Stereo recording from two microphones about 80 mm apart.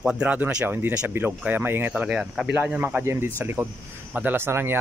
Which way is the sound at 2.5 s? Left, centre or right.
Right.